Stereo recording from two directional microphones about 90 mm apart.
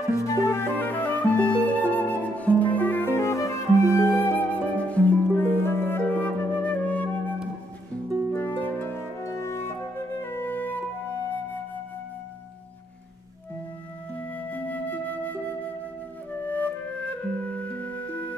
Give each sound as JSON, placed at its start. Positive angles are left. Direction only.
{"t": 0.2, "sound": "music", "side_deg": 35}
{"t": 8.3, "sound": "harp", "side_deg": 20}
{"t": 9.2, "sound": "music", "side_deg": 30}
{"t": 14.5, "sound": "flute", "side_deg": 20}
{"t": 16.4, "sound": "music", "side_deg": 20}